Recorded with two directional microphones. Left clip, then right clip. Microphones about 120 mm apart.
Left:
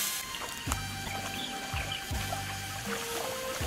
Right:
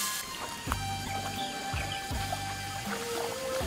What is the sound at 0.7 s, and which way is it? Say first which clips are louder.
Music: right 4 dB; centre (ahead or behind).